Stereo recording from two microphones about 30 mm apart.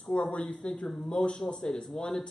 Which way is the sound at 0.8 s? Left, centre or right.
Centre.